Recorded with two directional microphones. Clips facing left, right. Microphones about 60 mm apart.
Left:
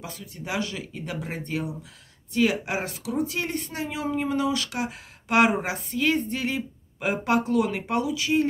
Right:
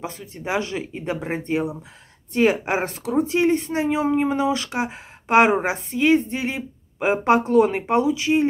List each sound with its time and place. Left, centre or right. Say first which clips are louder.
0.0 s speech: right 6 dB; right